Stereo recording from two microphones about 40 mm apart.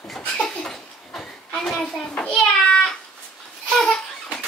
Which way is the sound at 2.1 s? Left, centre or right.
Left.